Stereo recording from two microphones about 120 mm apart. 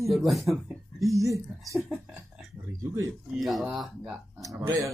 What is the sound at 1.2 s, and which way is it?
Speech, 25° right (ahead or behind).